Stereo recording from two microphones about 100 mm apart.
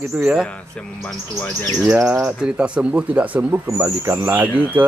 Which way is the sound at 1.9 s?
5° right (ahead or behind).